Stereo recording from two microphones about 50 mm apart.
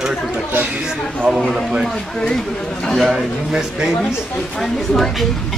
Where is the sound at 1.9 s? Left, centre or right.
Centre.